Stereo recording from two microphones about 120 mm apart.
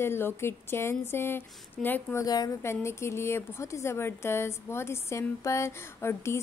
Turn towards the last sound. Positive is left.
turn(degrees=20)  # may be behind; listen again after turning